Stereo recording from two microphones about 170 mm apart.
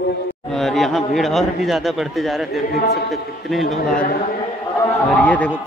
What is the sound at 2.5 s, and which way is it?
Speech, 70° left (ahead or behind).